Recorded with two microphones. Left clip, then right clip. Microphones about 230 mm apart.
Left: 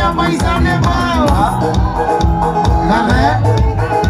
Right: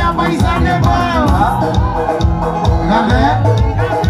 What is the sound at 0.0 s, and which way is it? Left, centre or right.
Music, left.